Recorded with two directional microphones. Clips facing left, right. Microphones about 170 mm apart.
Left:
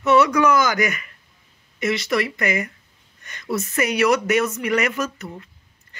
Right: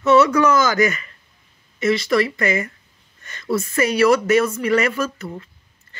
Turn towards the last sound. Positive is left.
turn(degrees=20)  # may be behind; listen again after turning